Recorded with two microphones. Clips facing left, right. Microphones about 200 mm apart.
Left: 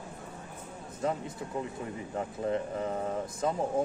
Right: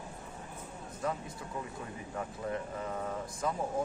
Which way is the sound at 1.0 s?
25° left (ahead or behind).